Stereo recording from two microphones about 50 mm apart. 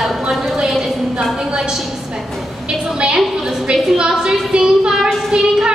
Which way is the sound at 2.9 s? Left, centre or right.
Centre.